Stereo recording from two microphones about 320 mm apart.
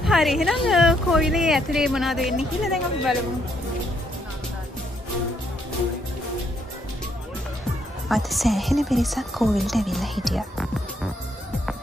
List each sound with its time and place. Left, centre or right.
0.0 s a woman's voice: centre
8.1 s a woman's voice: centre